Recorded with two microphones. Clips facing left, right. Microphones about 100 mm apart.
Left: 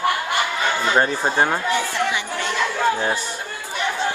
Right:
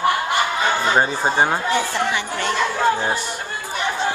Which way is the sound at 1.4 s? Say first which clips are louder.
Right 1 dB; 10° right (ahead or behind).